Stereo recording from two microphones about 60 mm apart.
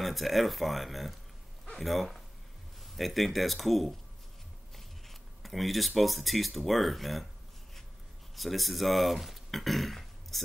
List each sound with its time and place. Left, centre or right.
0.0 s speech: centre
8.4 s speech: centre